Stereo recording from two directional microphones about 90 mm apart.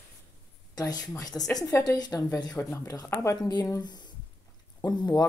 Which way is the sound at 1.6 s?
45° left (ahead or behind).